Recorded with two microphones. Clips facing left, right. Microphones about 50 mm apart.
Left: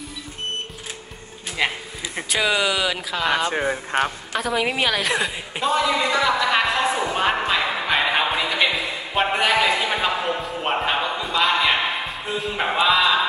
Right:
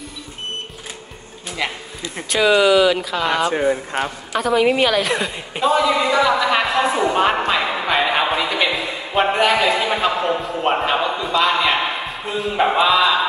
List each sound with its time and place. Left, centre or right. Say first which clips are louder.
1.6 s speech: left 1 dB; left
2.2 s a woman's voice: right 7 dB; centre
3.6 s speech: right 2 dB; left
4.3 s a woman's voice: right 6 dB; centre
11.1 s a sound: right 3 dB; centre
12.7 s a woman's voice: right 1 dB; centre